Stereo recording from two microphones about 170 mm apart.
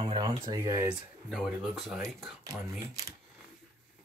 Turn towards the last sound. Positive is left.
turn(degrees=-15)  # may be behind; listen again after turning